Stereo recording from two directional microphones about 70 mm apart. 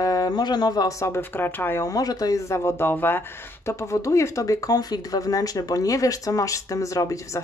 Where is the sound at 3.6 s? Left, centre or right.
Left.